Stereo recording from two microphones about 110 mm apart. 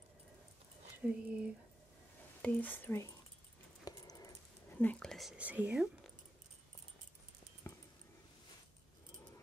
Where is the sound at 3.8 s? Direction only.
35° left (ahead or behind).